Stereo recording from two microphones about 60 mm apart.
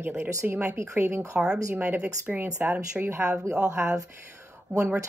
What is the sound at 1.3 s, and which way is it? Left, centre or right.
Speech, centre.